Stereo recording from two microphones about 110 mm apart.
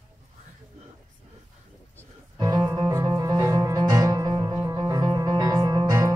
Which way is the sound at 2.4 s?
40° right (ahead or behind).